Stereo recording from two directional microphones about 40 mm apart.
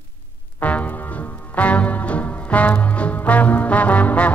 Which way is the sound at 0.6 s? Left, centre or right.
Left.